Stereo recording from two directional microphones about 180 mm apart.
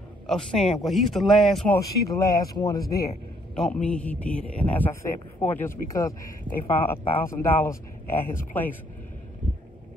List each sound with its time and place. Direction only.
0.3 s a man's voice: 5° left (ahead or behind)
1.8 s speech: 20° left (ahead or behind)
3.5 s speech: 5° left (ahead or behind)